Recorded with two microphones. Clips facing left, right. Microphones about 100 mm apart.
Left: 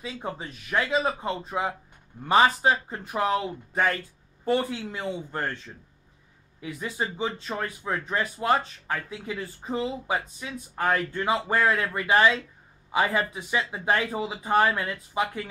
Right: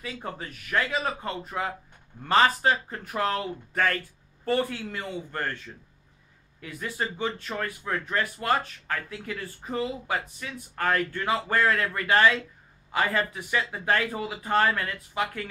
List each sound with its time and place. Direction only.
0.0 s speech: 20° left (ahead or behind)
6.6 s speech: 15° left (ahead or behind)